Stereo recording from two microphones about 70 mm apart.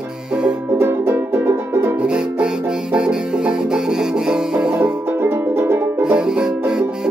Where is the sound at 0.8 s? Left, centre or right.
Right.